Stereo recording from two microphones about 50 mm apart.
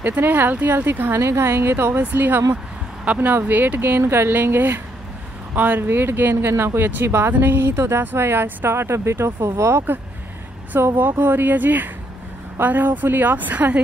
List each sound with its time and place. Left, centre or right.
0.0 s speech: right
1.2 s speech: right
2.0 s speech: right
3.1 s speech: centre
3.4 s speech: right
4.3 s speech: right
7.3 s speech: right
11.0 s speech: right